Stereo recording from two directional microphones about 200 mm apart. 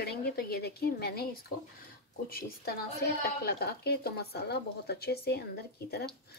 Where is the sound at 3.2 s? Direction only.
50° left (ahead or behind).